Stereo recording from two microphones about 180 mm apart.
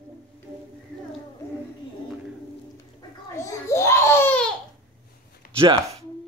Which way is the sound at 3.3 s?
15° left (ahead or behind).